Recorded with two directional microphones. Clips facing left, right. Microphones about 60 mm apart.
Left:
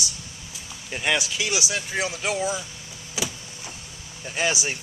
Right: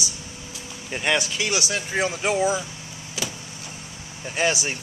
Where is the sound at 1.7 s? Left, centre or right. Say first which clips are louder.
Right 3 dB; centre.